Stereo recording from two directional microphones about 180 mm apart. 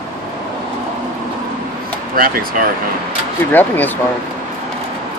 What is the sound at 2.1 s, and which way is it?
Speech, 55° right (ahead or behind).